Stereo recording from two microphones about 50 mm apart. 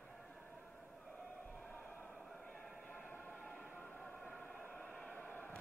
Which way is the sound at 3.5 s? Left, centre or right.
Left.